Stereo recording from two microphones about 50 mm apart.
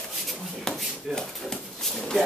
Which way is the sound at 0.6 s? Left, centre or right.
Centre.